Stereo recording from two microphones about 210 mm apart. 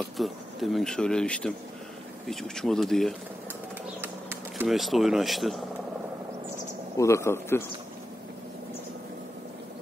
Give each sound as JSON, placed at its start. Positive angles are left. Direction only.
{"t": 0.0, "sound": "speech", "side_deg": 0}
{"t": 4.0, "sound": "speech", "side_deg": -10}
{"t": 7.0, "sound": "a man's voice", "side_deg": 15}